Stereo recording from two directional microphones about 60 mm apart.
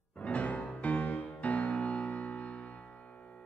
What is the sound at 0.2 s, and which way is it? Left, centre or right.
Music, left.